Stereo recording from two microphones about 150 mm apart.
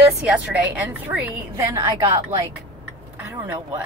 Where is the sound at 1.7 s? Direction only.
25° right (ahead or behind).